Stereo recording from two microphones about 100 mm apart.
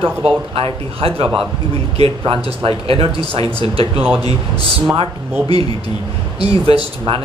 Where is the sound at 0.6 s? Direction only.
65° right (ahead or behind).